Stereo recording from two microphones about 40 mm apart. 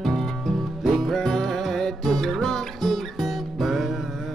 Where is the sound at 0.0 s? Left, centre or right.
Centre.